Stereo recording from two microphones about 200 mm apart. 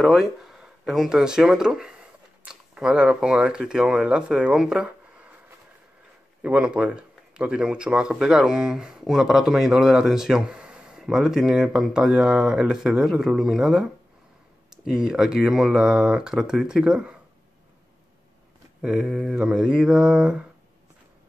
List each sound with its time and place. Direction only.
0.0 s speech: centre (ahead or behind)
6.4 s speech: 5° right (ahead or behind)
18.8 s speech: 5° right (ahead or behind)